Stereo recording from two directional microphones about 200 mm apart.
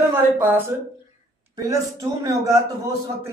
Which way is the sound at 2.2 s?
15° right (ahead or behind).